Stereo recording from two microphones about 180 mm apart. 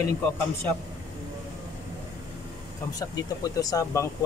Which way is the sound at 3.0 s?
20° left (ahead or behind).